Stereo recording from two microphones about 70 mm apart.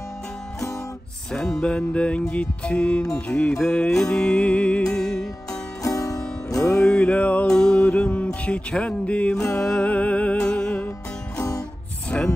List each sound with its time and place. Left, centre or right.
1.3 s music: centre
5.5 s music: left
6.7 s music: centre
7.4 s music: centre
12.1 s music: centre